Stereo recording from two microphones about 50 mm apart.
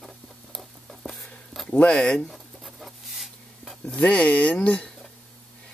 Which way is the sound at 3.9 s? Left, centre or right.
Left.